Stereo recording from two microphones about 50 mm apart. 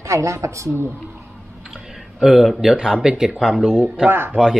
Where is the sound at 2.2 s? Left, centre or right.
Centre.